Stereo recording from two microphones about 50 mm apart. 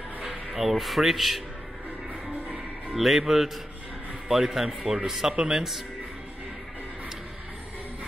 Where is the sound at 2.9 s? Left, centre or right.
Centre.